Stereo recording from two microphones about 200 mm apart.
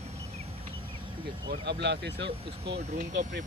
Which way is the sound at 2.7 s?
40° right (ahead or behind).